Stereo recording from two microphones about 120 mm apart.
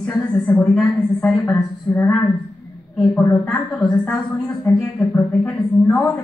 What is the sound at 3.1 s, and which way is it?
A woman's voice, 15° left (ahead or behind).